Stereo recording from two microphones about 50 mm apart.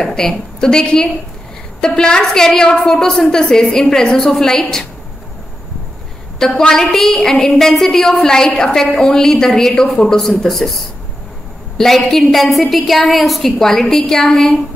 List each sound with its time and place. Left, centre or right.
0.0 s a woman's voice: centre
6.7 s a woman's voice: centre